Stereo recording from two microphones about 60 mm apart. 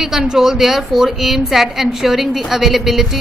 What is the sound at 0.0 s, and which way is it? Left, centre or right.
A woman's voice, centre.